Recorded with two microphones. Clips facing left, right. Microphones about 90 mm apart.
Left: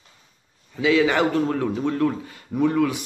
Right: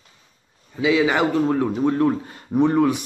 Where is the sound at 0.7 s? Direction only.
15° right (ahead or behind).